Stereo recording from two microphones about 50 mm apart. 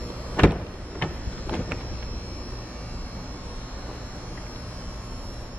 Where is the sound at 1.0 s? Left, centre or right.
Left.